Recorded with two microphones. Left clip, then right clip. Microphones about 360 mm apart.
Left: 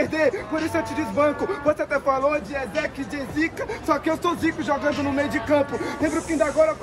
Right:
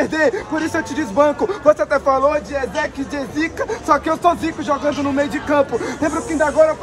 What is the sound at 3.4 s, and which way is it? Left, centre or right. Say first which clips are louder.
Speech: right 4 dB; centre.